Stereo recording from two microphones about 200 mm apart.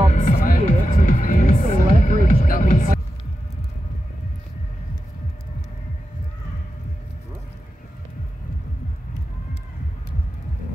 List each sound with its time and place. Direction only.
0.1 s music: 45° left (ahead or behind)